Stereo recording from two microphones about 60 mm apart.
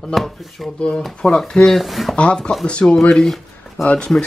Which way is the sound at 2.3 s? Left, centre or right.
Centre.